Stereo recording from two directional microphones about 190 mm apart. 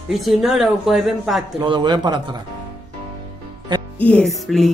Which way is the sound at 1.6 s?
25° right (ahead or behind).